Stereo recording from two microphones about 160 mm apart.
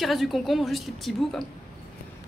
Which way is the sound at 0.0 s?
Centre (ahead or behind).